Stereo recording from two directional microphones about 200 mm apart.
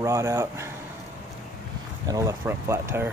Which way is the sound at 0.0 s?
15° right (ahead or behind).